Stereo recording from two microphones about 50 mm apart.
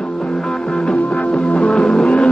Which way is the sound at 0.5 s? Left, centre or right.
Centre.